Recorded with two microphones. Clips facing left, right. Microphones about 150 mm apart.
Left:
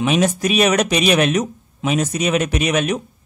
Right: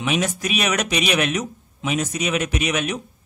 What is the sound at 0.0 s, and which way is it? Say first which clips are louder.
Speech: left 6 dB; 35° left (ahead or behind).